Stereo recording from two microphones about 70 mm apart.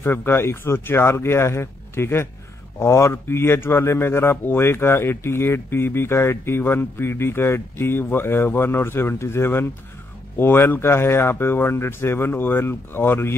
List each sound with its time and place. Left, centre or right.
0.0 s speech: left